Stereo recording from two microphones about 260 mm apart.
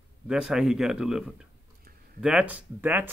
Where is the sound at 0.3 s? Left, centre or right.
Centre.